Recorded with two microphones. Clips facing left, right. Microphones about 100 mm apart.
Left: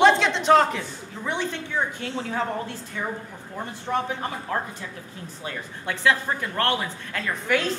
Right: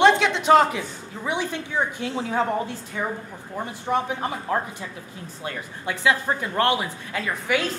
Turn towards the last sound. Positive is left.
turn(degrees=-5)  # may be behind; listen again after turning